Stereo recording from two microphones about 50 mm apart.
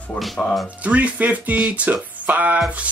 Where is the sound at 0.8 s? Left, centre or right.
Right.